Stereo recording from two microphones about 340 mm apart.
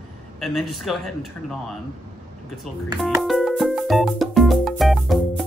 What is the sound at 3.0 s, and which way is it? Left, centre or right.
Music, centre.